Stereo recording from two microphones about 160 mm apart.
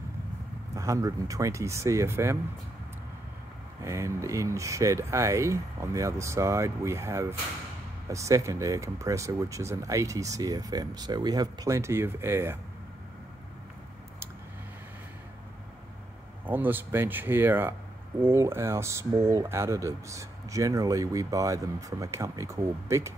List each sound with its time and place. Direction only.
0.7 s speech: 20° right (ahead or behind)
3.8 s speech: 20° right (ahead or behind)
16.4 s speech: 10° right (ahead or behind)